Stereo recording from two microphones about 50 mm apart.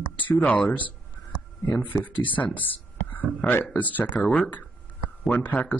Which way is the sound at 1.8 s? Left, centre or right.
Left.